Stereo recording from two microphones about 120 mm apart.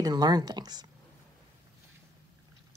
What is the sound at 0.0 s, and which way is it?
Speech, 35° right (ahead or behind).